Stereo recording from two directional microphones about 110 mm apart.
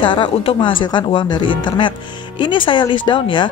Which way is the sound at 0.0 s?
50° left (ahead or behind).